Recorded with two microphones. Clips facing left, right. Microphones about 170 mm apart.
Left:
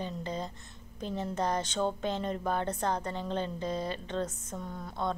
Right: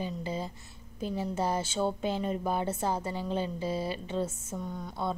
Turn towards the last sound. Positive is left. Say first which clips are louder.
# even
turn(degrees=0)  # may be behind; listen again after turning